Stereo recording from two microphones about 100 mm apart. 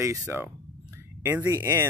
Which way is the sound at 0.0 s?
25° right (ahead or behind).